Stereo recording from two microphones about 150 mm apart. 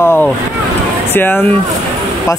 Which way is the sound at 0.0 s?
15° left (ahead or behind).